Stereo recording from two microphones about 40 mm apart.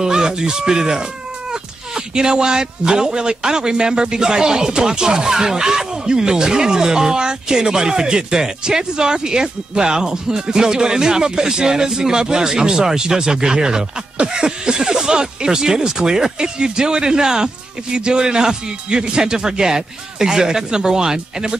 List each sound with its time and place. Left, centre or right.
0.0 s speech: centre